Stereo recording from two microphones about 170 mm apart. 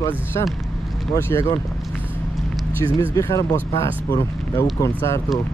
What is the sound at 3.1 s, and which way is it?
Speech, 20° left (ahead or behind).